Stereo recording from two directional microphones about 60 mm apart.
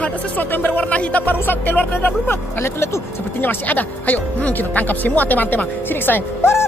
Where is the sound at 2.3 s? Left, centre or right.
Left.